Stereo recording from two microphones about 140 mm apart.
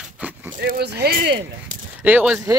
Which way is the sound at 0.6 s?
90° right.